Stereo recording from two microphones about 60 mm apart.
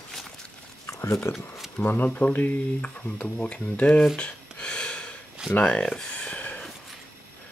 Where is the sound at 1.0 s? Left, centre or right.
Left.